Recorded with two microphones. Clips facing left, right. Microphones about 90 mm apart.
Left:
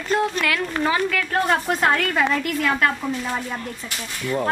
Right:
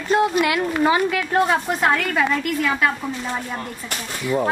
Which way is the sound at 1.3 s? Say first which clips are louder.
Right 2 dB; 5° right (ahead or behind).